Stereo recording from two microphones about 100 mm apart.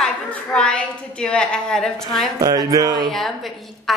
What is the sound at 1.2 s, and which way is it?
A woman's voice, 10° left (ahead or behind).